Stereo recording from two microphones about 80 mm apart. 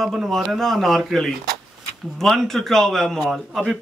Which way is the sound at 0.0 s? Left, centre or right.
Centre.